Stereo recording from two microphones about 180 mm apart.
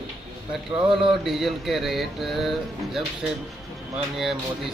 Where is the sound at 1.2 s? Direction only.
Centre (ahead or behind).